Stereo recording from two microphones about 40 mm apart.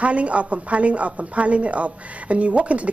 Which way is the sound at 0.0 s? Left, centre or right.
Right.